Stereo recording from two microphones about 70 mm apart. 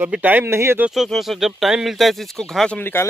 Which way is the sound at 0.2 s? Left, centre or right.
Right.